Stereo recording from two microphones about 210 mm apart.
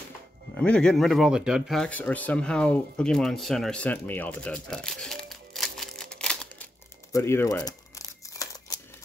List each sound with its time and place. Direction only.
0.6 s speech: 5° left (ahead or behind)
7.1 s crumpling: 15° left (ahead or behind)